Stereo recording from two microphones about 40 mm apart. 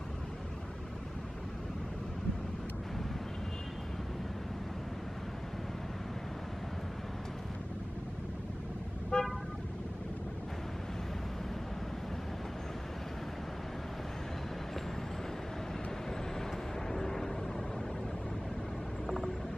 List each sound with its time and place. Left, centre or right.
9.1 s car: left
16.9 s vehicle: centre
19.0 s vehicle: centre